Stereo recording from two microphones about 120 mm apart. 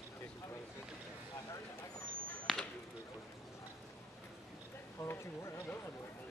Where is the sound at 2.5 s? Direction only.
Centre (ahead or behind).